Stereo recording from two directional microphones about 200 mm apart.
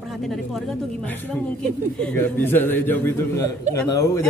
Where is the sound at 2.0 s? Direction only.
10° left (ahead or behind).